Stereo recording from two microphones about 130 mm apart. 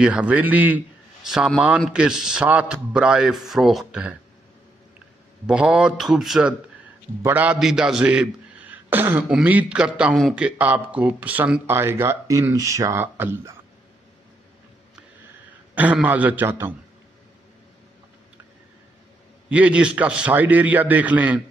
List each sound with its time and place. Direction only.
0.0 s a man's voice: 10° right (ahead or behind)
5.5 s a man's voice: 10° right (ahead or behind)
7.2 s a man's voice: 15° right (ahead or behind)
7.5 s a man's voice: 5° right (ahead or behind)
15.7 s a man's voice: 10° right (ahead or behind)
19.5 s a man's voice: 10° right (ahead or behind)